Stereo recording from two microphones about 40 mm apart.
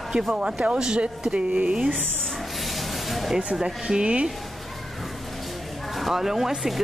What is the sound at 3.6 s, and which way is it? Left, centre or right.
Speech, right.